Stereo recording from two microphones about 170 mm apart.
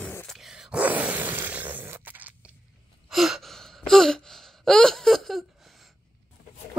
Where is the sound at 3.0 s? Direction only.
Centre (ahead or behind).